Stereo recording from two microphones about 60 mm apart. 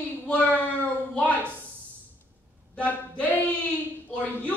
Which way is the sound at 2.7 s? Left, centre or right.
Left.